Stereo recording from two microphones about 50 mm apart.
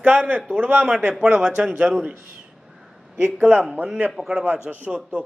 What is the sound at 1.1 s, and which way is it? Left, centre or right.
Speech, centre.